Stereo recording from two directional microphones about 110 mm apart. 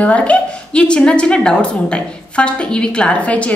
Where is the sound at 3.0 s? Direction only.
10° left (ahead or behind).